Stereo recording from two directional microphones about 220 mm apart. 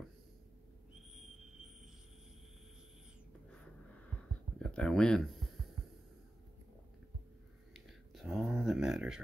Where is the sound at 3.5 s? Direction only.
5° left (ahead or behind).